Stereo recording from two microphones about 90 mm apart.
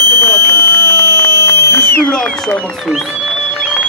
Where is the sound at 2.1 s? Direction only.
5° left (ahead or behind).